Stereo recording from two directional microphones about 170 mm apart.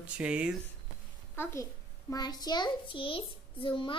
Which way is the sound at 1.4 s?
15° left (ahead or behind).